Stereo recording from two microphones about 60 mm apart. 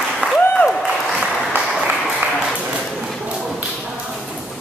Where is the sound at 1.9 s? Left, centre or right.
Right.